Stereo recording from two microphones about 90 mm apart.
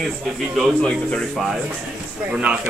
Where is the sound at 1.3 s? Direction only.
Centre (ahead or behind).